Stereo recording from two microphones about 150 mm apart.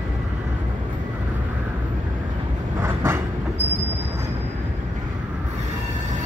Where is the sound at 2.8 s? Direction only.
15° right (ahead or behind).